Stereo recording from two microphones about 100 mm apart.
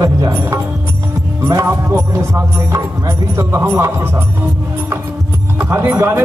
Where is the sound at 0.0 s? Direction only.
30° right (ahead or behind).